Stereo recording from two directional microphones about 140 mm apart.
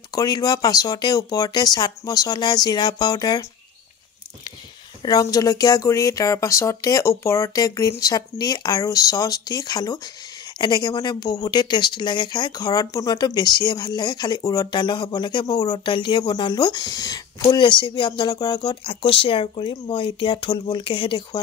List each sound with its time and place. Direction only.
0.1 s speech: 25° left (ahead or behind)
5.0 s speech: 25° left (ahead or behind)